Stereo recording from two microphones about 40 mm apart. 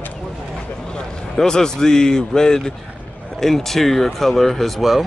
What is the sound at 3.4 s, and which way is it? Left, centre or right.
Speech, centre.